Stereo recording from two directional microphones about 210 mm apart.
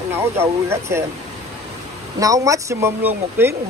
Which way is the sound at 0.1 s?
10° right (ahead or behind).